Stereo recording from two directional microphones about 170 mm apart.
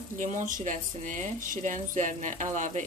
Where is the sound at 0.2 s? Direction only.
50° right (ahead or behind).